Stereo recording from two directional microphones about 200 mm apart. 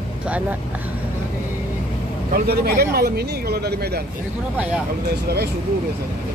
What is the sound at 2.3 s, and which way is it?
Speech, 50° right (ahead or behind).